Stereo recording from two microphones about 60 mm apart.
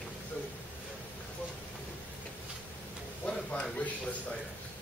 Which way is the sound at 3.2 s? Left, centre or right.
Centre.